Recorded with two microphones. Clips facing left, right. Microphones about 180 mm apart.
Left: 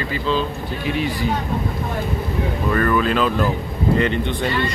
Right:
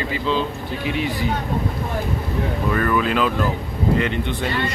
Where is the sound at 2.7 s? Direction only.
10° right (ahead or behind).